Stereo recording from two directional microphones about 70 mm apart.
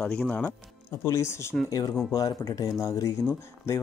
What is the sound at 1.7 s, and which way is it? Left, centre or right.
Speech, left.